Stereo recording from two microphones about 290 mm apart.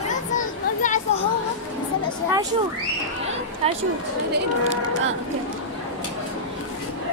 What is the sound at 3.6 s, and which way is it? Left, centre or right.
Speech, centre.